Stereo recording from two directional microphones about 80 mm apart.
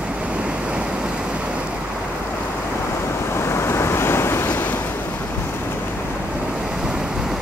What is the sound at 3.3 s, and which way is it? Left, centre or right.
Waves, left.